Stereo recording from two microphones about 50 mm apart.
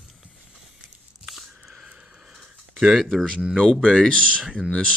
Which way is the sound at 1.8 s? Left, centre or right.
Right.